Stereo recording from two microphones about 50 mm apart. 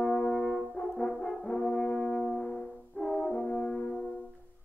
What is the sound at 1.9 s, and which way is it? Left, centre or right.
Brass instrument, centre.